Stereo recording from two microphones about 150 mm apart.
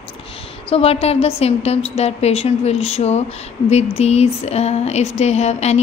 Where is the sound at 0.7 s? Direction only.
40° left (ahead or behind).